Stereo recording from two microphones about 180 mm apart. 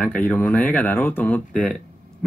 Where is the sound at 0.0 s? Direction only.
10° left (ahead or behind).